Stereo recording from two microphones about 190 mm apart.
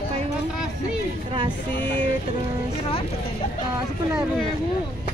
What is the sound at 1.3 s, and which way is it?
Speech, 25° right (ahead or behind).